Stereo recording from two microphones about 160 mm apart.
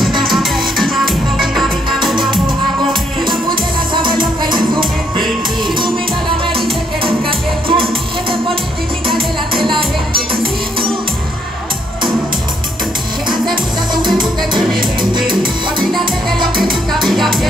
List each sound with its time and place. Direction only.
0.2 s music: centre (ahead or behind)
3.9 s music: 30° right (ahead or behind)
7.0 s music: 35° right (ahead or behind)
10.1 s music: 70° right (ahead or behind)
14.0 s music: 30° right (ahead or behind)
15.8 s music: centre (ahead or behind)